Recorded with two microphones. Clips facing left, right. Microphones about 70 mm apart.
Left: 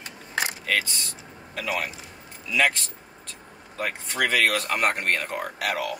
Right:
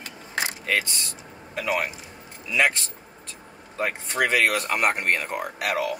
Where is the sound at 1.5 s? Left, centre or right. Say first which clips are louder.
Right 3 dB; right.